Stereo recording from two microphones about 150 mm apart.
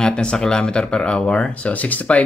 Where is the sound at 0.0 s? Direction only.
5° left (ahead or behind).